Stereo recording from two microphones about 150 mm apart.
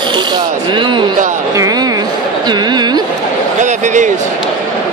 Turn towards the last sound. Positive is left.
turn(degrees=-55)  # may be behind; listen again after turning